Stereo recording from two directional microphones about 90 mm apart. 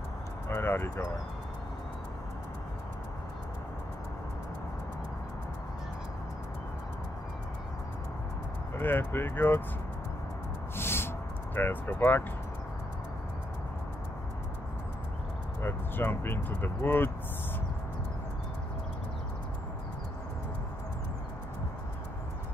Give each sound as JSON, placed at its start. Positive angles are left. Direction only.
{"t": 0.5, "sound": "speech", "side_deg": 25}
{"t": 8.7, "sound": "speech", "side_deg": 25}
{"t": 10.8, "sound": "a sound", "side_deg": 25}
{"t": 15.6, "sound": "speech", "side_deg": 25}